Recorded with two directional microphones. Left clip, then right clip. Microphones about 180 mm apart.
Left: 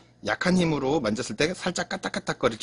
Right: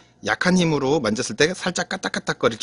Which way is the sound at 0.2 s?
25° right (ahead or behind).